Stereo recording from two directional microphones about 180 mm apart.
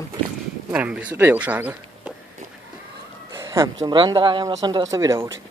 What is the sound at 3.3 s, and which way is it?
Speech, 15° right (ahead or behind).